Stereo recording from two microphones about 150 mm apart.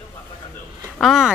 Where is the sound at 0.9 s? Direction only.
Centre (ahead or behind).